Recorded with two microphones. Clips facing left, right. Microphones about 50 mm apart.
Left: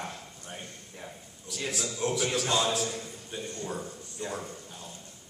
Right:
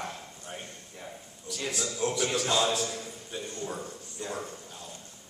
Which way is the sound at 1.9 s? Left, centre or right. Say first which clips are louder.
Even; left.